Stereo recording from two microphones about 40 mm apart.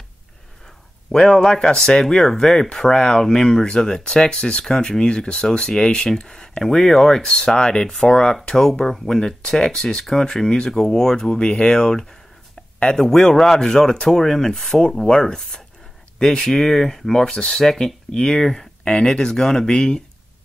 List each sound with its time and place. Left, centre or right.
1.1 s speech: centre
8.4 s speech: centre